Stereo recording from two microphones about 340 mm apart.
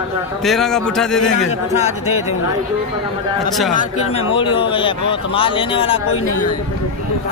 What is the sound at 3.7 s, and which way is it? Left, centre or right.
A man's voice, left.